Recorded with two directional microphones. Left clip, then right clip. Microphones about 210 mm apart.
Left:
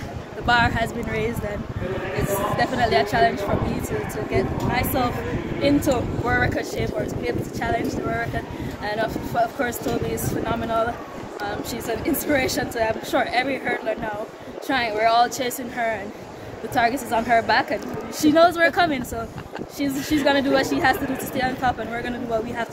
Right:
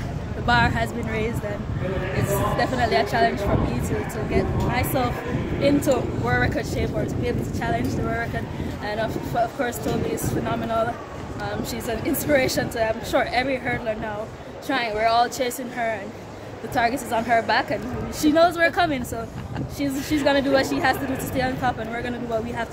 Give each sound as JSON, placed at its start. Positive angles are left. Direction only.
{"t": 0.5, "sound": "speech", "side_deg": 0}
{"t": 20.2, "sound": "speech", "side_deg": 0}